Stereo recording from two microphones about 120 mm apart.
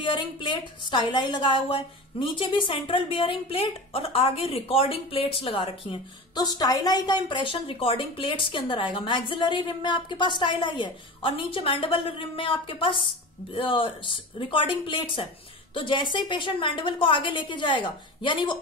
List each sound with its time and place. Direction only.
0.0 s a woman's voice: 40° left (ahead or behind)
6.3 s a woman's voice: 35° left (ahead or behind)